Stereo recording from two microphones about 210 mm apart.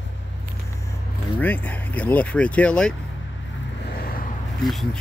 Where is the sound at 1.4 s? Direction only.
10° left (ahead or behind).